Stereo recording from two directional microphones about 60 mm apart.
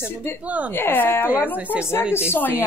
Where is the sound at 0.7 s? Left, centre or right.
Left.